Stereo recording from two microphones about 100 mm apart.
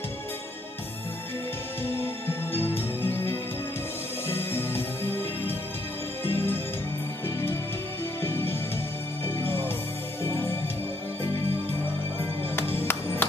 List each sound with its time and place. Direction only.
2.0 s music: 20° left (ahead or behind)
8.2 s music: 20° left (ahead or behind)
12.5 s music: 20° left (ahead or behind)